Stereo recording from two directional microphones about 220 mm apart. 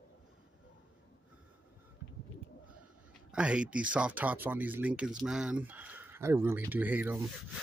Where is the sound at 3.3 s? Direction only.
5° right (ahead or behind).